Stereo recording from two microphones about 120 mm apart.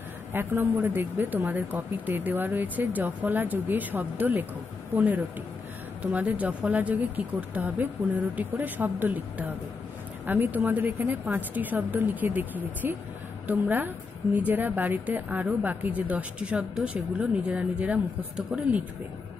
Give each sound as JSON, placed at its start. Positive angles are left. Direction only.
{"t": 0.3, "sound": "a woman's voice", "side_deg": -15}